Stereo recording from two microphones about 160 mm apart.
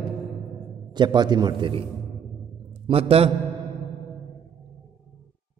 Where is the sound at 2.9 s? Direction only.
35° right (ahead or behind).